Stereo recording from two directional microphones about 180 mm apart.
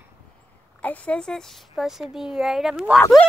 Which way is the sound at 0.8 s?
10° left (ahead or behind).